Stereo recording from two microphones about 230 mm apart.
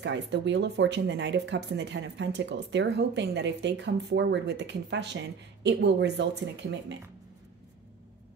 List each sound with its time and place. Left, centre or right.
0.0 s speech: right